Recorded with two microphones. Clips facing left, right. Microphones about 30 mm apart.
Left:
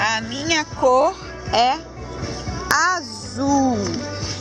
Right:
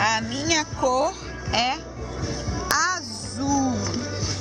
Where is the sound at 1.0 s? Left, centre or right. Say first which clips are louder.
Left 6 dB; centre.